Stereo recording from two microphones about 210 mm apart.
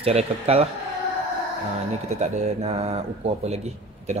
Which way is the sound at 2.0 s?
35° right (ahead or behind).